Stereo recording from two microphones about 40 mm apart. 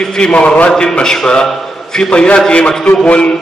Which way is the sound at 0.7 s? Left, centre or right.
Centre.